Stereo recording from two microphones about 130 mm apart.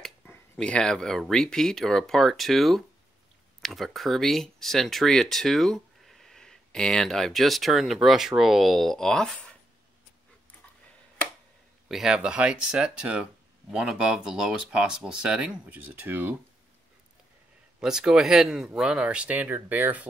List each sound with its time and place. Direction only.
0.0 s speech: 5° left (ahead or behind)
11.9 s speech: 5° right (ahead or behind)
17.7 s speech: 5° right (ahead or behind)